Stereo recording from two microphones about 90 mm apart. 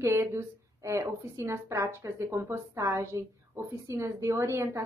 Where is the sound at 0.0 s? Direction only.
30° right (ahead or behind).